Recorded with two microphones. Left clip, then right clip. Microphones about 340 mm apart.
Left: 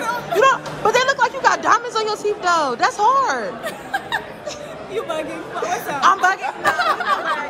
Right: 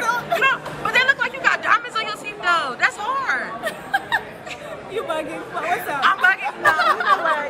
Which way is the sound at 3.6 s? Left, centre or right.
Centre.